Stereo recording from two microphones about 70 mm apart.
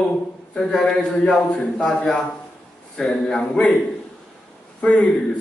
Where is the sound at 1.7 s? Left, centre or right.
Centre.